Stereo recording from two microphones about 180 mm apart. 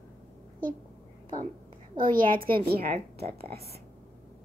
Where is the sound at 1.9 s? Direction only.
50° right (ahead or behind).